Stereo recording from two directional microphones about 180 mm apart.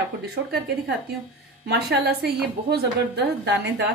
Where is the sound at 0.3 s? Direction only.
65° right (ahead or behind).